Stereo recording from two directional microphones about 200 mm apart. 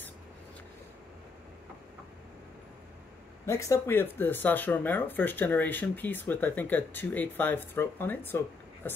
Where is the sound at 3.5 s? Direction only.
15° left (ahead or behind).